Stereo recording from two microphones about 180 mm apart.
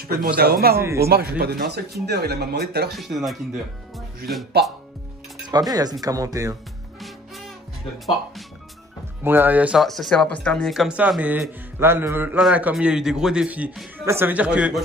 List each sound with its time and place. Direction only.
0.0 s a man's voice: 60° right (ahead or behind)
0.7 s speech: 15° right (ahead or behind)
1.0 s speech: 60° right (ahead or behind)
2.9 s speech: centre (ahead or behind)
4.5 s speech: 65° right (ahead or behind)
5.5 s speech: 20° right (ahead or behind)
9.2 s speech: 10° right (ahead or behind)